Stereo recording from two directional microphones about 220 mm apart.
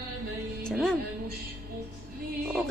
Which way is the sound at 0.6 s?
5° left (ahead or behind).